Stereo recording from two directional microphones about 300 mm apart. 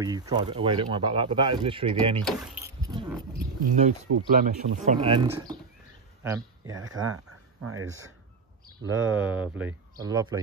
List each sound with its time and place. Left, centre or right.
0.0 s speech: centre
2.8 s a sound: centre
3.3 s a sound: right
4.4 s speech: centre
7.6 s speech: right
9.1 s speech: centre